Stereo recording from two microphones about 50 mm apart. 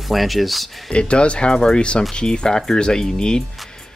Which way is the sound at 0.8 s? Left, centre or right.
Left.